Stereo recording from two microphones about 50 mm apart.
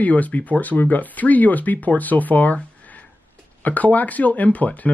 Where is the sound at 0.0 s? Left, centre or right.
Left.